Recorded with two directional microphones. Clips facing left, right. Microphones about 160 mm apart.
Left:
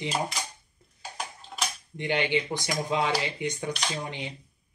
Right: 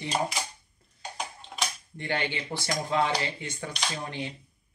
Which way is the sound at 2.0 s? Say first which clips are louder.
Left 5 dB; 15° left (ahead or behind).